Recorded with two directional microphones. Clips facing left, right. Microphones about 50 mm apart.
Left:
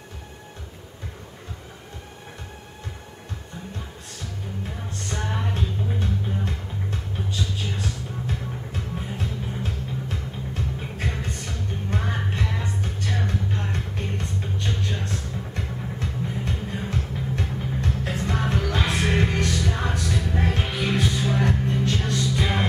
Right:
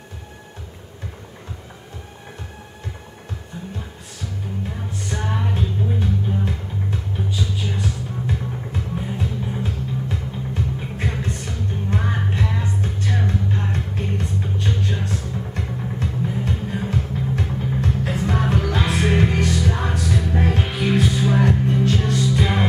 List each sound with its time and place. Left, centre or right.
5.1 s music: centre